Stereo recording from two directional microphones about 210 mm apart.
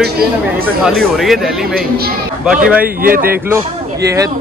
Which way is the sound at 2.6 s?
5° right (ahead or behind).